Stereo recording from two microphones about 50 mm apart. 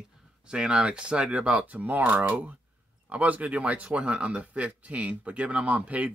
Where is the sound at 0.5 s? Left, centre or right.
Centre.